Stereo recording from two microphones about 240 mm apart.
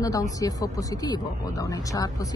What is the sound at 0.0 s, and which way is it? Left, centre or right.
Speech, centre.